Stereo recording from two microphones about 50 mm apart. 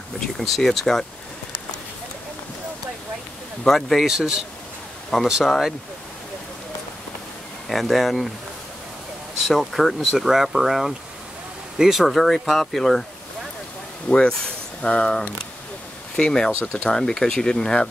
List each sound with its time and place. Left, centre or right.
0.4 s speech: centre
3.6 s speech: centre
4.1 s speech: centre
7.6 s speech: centre
9.4 s speech: centre
14.0 s speech: centre